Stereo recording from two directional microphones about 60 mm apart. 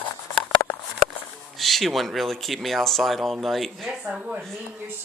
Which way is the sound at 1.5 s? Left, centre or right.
Centre.